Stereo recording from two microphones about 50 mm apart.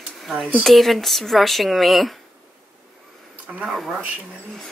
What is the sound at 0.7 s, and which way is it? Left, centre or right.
Speech, centre.